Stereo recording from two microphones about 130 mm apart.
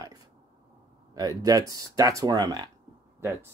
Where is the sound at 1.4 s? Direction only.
30° right (ahead or behind).